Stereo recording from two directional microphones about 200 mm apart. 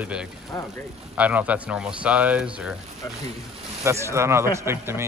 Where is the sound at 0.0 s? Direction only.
5° right (ahead or behind).